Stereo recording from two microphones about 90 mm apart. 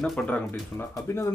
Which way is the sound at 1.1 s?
30° left (ahead or behind).